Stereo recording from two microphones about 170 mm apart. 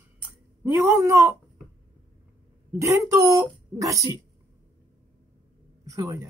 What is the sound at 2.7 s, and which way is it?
Speech, 20° right (ahead or behind).